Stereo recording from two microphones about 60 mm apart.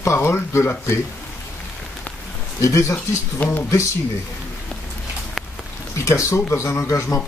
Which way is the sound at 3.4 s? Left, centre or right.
Left.